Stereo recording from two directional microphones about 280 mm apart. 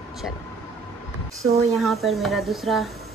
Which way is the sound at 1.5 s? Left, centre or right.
Right.